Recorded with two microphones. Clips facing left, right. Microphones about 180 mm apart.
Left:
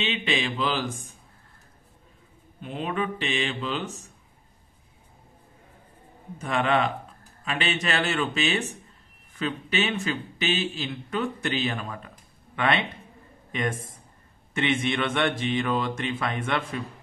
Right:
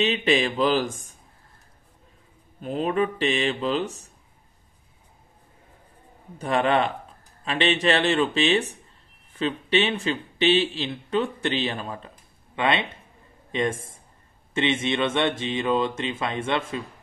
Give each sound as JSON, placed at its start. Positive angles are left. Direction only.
{"t": 0.0, "sound": "speech", "side_deg": -40}
{"t": 2.6, "sound": "speech", "side_deg": -40}
{"t": 6.3, "sound": "speech", "side_deg": -35}